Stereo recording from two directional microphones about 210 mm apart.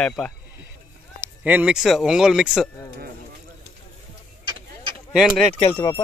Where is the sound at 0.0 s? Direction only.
5° left (ahead or behind).